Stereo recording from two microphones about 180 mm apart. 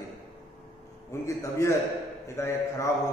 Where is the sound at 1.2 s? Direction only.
15° left (ahead or behind).